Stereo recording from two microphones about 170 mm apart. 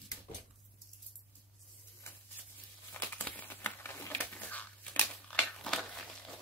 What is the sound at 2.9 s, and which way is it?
Crumpling, 10° left (ahead or behind).